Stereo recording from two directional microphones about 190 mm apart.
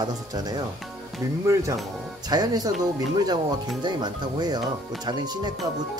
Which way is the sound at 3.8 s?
20° right (ahead or behind).